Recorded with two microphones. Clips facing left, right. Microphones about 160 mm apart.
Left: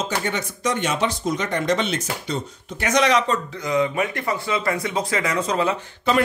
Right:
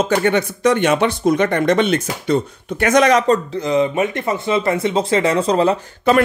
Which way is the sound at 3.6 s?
25° right (ahead or behind).